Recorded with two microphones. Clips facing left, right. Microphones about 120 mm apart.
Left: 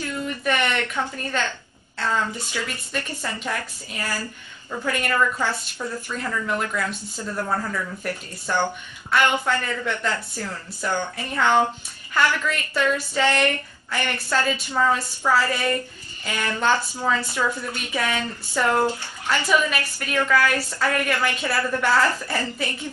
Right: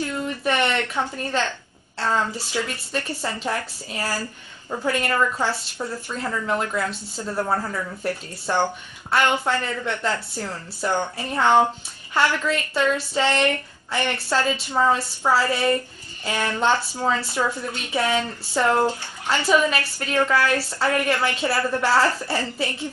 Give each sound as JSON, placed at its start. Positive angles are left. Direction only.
{"t": 0.4, "sound": "speech", "side_deg": -30}